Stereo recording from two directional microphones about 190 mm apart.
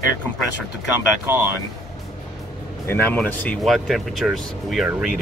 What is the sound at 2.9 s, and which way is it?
Speech, 10° left (ahead or behind).